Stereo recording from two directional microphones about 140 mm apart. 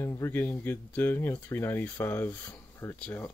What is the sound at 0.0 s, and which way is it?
Speech, 20° left (ahead or behind).